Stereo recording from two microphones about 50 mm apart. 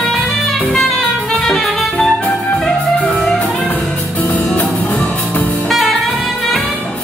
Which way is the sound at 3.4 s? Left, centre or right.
Left.